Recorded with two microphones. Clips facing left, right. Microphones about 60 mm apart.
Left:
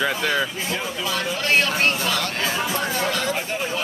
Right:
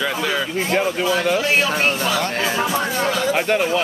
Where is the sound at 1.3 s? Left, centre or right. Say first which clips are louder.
Right 2 dB; centre.